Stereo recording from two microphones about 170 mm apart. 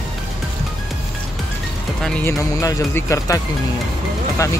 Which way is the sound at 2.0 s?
5° left (ahead or behind).